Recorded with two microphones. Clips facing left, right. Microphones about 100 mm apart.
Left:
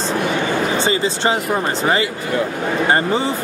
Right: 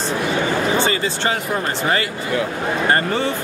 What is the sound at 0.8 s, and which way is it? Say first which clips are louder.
Speech: left 2 dB; 20° left (ahead or behind).